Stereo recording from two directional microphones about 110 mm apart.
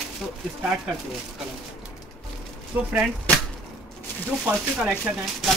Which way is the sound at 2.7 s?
15° right (ahead or behind).